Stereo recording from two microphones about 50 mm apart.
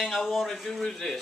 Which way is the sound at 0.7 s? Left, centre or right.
Centre.